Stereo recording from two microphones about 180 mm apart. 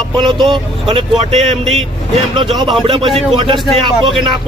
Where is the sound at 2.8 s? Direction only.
30° right (ahead or behind).